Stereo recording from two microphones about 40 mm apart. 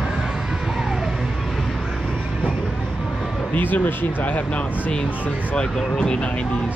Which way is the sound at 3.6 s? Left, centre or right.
Left.